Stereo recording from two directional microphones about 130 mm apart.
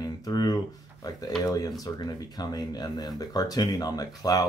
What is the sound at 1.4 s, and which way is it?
Speech, 25° left (ahead or behind).